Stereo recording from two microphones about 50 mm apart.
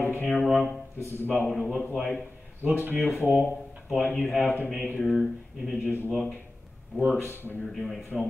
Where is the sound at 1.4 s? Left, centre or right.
Centre.